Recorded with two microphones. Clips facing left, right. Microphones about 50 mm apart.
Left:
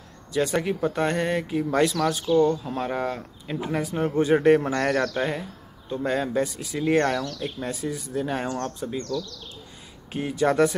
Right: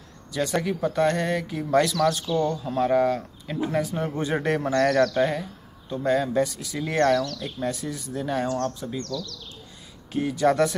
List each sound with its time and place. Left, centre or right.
0.3 s speech: centre
8.9 s speech: centre